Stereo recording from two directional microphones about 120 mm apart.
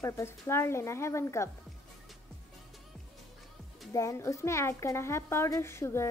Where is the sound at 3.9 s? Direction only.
25° left (ahead or behind).